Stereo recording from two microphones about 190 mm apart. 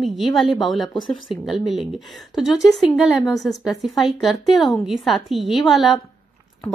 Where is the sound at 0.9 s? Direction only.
25° left (ahead or behind).